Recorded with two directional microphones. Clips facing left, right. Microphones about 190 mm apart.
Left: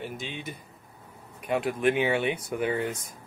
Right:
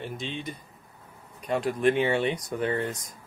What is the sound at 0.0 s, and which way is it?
Speech, 5° left (ahead or behind).